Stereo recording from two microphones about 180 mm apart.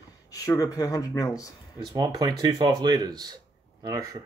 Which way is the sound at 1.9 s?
20° right (ahead or behind).